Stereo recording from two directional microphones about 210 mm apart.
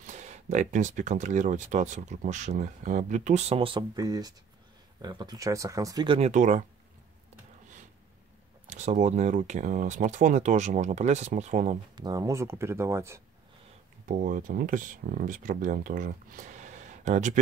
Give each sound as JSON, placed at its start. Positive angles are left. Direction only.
{"t": 0.0, "sound": "speech", "side_deg": -35}
{"t": 8.6, "sound": "speech", "side_deg": -30}
{"t": 11.9, "sound": "speech", "side_deg": -20}
{"t": 14.0, "sound": "speech", "side_deg": -40}